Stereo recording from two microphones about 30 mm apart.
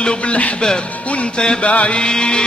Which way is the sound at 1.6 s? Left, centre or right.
Left.